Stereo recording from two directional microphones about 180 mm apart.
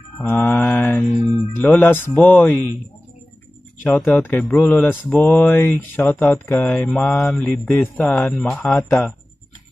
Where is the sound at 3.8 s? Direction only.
10° left (ahead or behind).